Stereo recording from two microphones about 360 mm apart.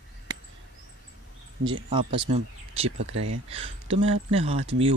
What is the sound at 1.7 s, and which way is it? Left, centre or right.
Speech, centre.